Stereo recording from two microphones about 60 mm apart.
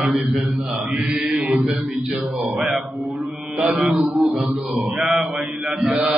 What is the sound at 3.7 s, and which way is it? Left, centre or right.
Mantra, centre.